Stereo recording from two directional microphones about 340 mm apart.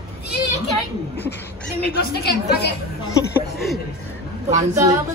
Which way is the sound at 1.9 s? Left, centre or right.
Left.